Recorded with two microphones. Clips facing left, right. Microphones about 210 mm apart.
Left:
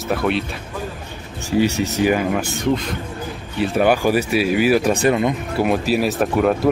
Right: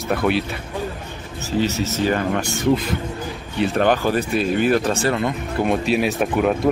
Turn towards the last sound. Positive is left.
turn(degrees=0)  # may be behind; listen again after turning